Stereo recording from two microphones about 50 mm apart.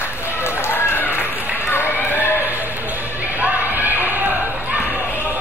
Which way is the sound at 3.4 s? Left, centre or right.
Right.